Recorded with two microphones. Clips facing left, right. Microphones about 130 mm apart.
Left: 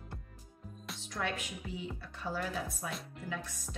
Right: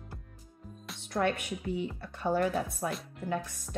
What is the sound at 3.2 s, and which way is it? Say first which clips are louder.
Speech: right 9 dB; 60° right (ahead or behind).